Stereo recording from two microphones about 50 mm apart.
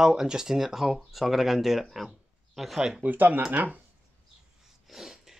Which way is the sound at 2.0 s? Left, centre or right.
Centre.